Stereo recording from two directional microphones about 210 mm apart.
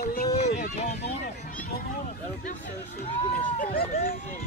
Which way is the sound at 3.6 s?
45° left (ahead or behind).